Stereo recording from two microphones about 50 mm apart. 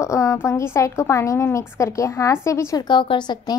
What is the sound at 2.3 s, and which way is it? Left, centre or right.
Speech, left.